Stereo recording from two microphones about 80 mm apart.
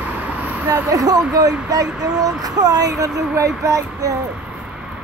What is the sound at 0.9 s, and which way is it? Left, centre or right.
Speech, right.